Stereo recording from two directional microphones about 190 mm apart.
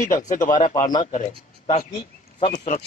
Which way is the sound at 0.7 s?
25° left (ahead or behind).